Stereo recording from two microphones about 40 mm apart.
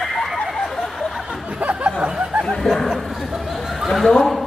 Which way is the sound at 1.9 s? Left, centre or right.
Centre.